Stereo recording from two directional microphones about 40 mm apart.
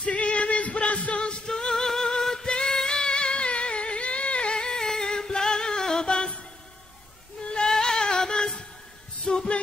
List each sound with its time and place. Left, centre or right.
0.1 s music: left
1.4 s music: centre
4.6 s music: centre
7.4 s goat: centre
7.7 s music: centre